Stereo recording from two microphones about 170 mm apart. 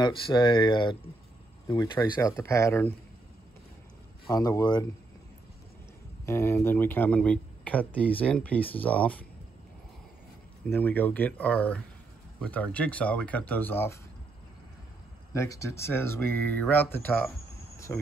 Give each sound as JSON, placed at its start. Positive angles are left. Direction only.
{"t": 0.0, "sound": "speech", "side_deg": 25}
{"t": 4.3, "sound": "speech", "side_deg": 20}
{"t": 6.2, "sound": "speech", "side_deg": 15}
{"t": 10.7, "sound": "speech", "side_deg": 10}
{"t": 15.3, "sound": "speech", "side_deg": 20}